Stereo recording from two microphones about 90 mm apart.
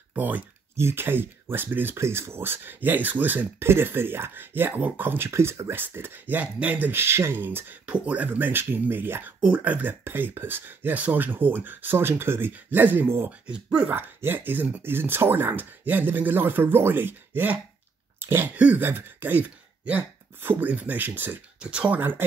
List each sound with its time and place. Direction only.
0.1 s speech: 20° right (ahead or behind)
13.5 s speech: 10° right (ahead or behind)
13.9 s speech: 25° right (ahead or behind)
21.5 s speech: 10° right (ahead or behind)